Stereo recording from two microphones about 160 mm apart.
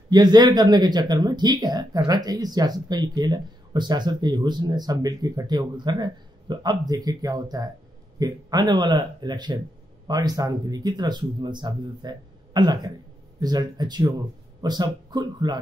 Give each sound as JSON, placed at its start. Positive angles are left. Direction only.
{"t": 0.1, "sound": "speech", "side_deg": -25}